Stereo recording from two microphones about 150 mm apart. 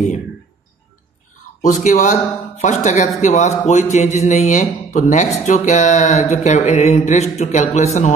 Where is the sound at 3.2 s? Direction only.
50° left (ahead or behind).